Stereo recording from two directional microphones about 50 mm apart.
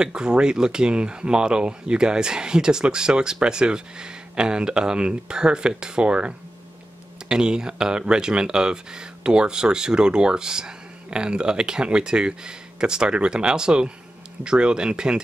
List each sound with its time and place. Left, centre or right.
0.0 s speech: centre